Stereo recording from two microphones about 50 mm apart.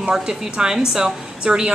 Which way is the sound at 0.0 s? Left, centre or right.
Centre.